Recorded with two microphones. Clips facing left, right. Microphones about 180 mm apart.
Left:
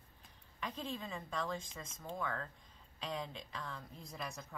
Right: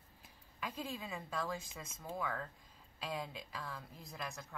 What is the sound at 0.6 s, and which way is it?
A woman's voice, 10° right (ahead or behind).